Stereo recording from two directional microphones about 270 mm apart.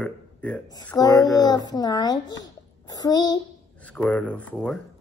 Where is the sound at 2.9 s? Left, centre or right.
Centre.